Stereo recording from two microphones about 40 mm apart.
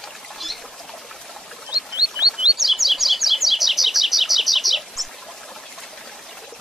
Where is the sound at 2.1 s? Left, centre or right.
Right.